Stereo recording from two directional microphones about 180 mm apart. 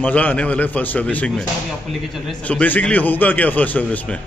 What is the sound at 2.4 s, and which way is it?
Speech, 10° left (ahead or behind).